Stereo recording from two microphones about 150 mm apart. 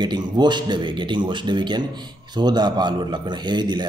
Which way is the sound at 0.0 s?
30° right (ahead or behind).